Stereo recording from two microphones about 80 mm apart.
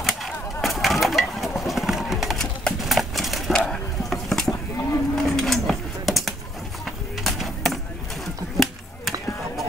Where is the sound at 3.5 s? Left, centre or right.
Centre.